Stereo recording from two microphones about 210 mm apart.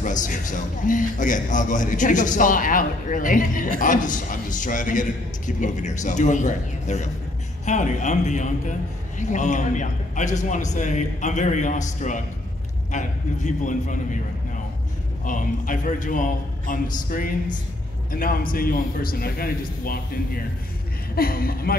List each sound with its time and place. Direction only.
0.0 s a man's voice: 40° left (ahead or behind)
15.2 s a man's voice: 40° left (ahead or behind)
21.1 s a man's voice: 45° left (ahead or behind)